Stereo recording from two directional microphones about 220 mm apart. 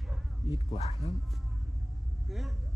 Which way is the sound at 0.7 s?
30° left (ahead or behind).